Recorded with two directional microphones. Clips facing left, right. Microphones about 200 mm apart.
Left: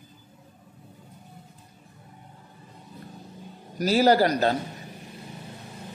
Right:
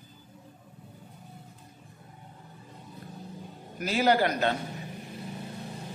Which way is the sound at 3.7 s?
40° left (ahead or behind).